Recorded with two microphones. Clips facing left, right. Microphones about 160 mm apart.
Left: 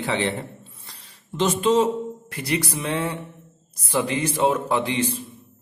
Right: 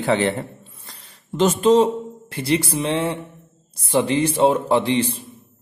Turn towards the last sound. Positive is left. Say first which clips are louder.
# right 4 dB
turn(degrees=-30)  # may be behind; listen again after turning